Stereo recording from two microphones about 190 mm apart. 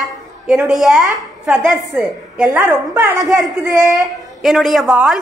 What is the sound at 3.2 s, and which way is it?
Speech, 20° right (ahead or behind).